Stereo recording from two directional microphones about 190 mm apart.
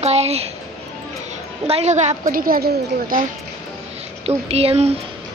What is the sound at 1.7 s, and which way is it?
A woman's voice, 35° right (ahead or behind).